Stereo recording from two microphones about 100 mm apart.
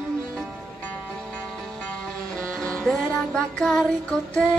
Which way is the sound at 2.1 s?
5° left (ahead or behind).